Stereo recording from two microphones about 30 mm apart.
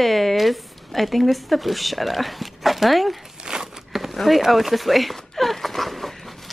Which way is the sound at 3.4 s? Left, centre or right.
Right.